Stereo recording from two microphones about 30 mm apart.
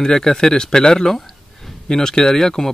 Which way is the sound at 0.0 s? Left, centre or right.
Left.